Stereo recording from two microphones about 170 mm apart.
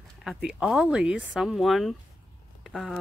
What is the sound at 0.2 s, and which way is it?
Speech, 5° right (ahead or behind).